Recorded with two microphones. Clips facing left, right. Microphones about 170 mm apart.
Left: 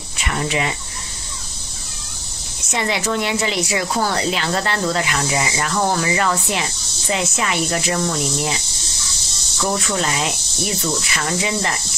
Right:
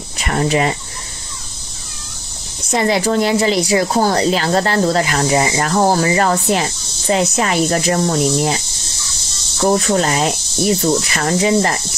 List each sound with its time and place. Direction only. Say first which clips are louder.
0.2 s speech: right 6 dB; 40° right (ahead or behind)
2.7 s speech: right 6 dB; 35° right (ahead or behind)